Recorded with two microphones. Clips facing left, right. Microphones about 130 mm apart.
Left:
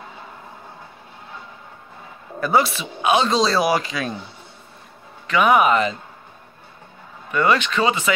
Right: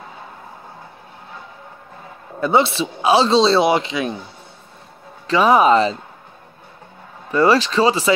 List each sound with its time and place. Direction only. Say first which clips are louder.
2.4 s speech: right 3 dB; 25° right (ahead or behind)
5.2 s speech: right 2 dB; 30° right (ahead or behind)
7.2 s speech: right 4 dB; 35° right (ahead or behind)